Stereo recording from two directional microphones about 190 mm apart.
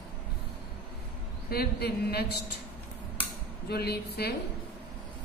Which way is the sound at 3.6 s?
55° left (ahead or behind).